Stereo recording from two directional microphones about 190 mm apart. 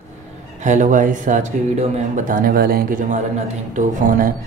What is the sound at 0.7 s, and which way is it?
Speech, 40° right (ahead or behind).